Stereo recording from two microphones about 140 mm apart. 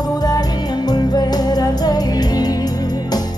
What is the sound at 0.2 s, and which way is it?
Music, 30° left (ahead or behind).